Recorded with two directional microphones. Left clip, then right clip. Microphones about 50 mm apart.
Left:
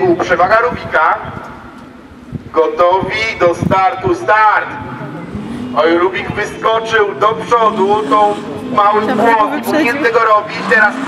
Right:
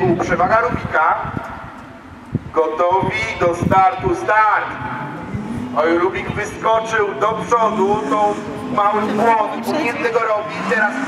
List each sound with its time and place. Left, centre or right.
0.2 s a man's voice: left
2.5 s a man's voice: left
5.8 s a man's voice: left
9.0 s speech: left
10.0 s a man's voice: left